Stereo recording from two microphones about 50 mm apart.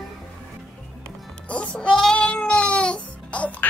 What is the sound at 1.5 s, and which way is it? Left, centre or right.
Music, left.